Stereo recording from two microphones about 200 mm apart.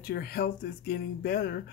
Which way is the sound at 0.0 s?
50° left (ahead or behind).